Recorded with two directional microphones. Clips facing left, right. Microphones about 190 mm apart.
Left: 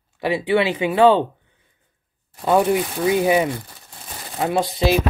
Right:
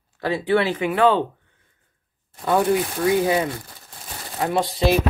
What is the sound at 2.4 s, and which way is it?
Speech, 20° left (ahead or behind).